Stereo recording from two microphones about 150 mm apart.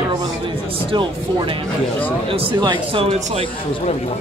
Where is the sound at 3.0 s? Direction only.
40° right (ahead or behind).